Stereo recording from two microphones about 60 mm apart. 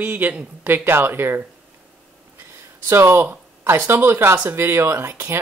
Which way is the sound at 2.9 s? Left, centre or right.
Right.